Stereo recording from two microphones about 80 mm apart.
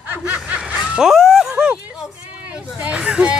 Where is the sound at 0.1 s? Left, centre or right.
Right.